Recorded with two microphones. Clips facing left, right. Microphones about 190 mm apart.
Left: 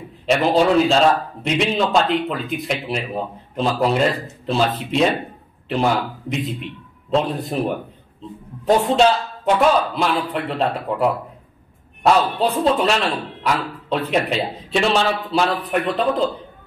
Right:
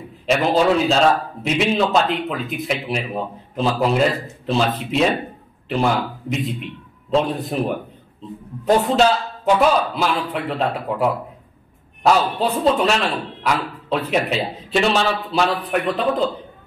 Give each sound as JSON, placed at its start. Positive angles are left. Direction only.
{"t": 0.3, "sound": "a man's voice", "side_deg": 0}
{"t": 6.2, "sound": "a man's voice", "side_deg": 0}